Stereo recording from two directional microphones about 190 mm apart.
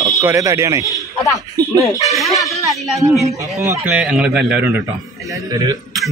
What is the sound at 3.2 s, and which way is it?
Speech, 35° right (ahead or behind).